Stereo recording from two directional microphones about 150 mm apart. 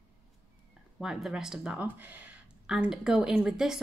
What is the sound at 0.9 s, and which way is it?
Speech, 5° right (ahead or behind).